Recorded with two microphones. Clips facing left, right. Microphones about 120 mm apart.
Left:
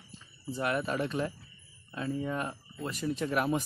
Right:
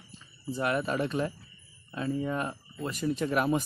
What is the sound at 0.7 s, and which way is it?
Speech, 25° right (ahead or behind).